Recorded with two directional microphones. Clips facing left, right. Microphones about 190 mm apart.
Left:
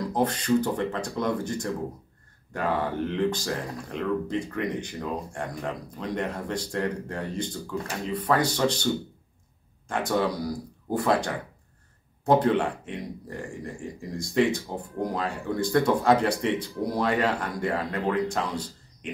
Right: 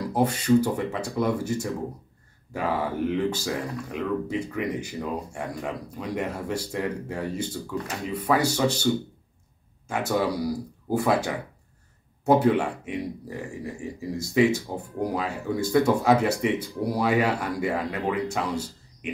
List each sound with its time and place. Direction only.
0.1 s speech: 10° right (ahead or behind)
9.8 s speech: 5° right (ahead or behind)